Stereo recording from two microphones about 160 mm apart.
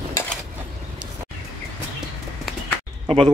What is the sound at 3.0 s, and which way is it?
Speech, 35° right (ahead or behind).